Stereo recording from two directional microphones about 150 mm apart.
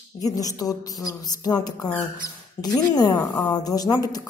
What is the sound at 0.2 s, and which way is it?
Speech, 25° left (ahead or behind).